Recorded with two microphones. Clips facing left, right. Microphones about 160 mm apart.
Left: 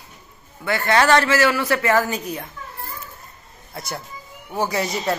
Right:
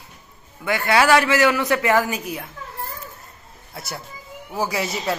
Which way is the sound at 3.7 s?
5° right (ahead or behind).